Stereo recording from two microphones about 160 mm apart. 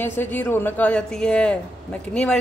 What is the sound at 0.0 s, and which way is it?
A woman's voice, 10° left (ahead or behind).